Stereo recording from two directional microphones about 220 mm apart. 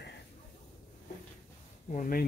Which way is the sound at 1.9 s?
40° left (ahead or behind).